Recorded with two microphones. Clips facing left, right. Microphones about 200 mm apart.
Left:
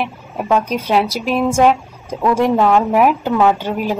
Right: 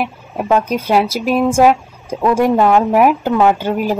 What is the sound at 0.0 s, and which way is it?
Speech, centre (ahead or behind).